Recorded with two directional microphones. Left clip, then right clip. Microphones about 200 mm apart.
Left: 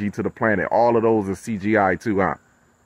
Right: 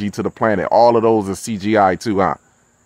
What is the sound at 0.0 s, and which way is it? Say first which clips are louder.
Speech: right 4 dB; 20° right (ahead or behind).